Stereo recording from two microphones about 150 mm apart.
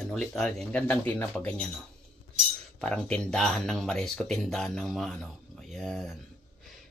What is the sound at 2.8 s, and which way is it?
Speech, 5° left (ahead or behind).